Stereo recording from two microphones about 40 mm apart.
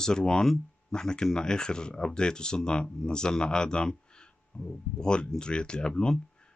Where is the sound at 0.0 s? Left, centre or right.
Centre.